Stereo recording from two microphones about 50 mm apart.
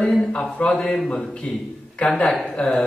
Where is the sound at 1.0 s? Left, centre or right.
Centre.